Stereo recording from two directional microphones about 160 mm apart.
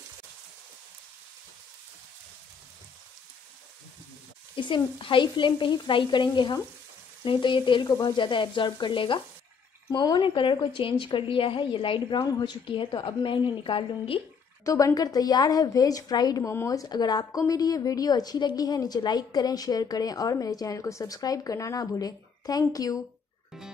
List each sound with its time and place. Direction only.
4.6 s a woman's voice: 30° left (ahead or behind)
14.6 s a woman's voice: 20° left (ahead or behind)